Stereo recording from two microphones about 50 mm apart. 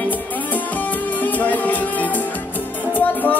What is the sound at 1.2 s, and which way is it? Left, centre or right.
Music, left.